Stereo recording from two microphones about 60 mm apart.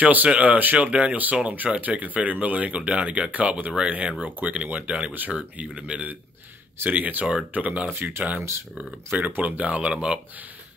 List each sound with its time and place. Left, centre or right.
0.0 s speech: right
7.9 s speech: right
9.1 s speech: right